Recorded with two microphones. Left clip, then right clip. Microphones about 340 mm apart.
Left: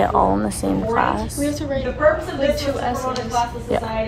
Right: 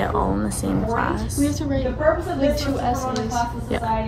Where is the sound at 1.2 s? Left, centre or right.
Centre.